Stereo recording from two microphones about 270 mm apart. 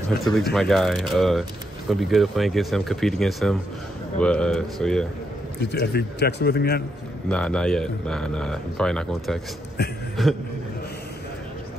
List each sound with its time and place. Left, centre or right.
0.2 s speech: centre
5.6 s a man's voice: left
7.2 s speech: centre
9.8 s a man's voice: left
10.2 s speech: centre